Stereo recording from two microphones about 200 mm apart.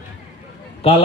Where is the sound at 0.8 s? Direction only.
30° left (ahead or behind).